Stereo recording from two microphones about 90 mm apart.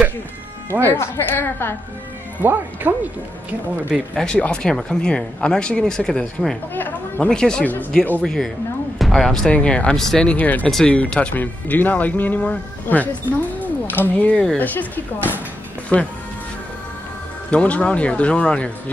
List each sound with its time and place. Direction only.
0.9 s a woman's voice: 30° left (ahead or behind)
2.4 s speech: 20° right (ahead or behind)
3.9 s speech: 5° left (ahead or behind)
6.7 s speech: 20° left (ahead or behind)
7.2 s speech: 10° left (ahead or behind)
8.2 s speech: 5° left (ahead or behind)
13.6 s a sound: 20° left (ahead or behind)
14.6 s a woman's voice: 20° left (ahead or behind)
17.5 s speech: 15° left (ahead or behind)